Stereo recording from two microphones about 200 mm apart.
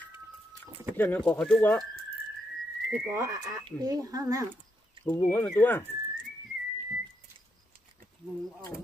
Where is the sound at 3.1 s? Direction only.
15° right (ahead or behind).